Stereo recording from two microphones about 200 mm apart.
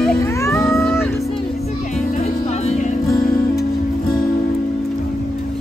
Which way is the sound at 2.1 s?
30° left (ahead or behind).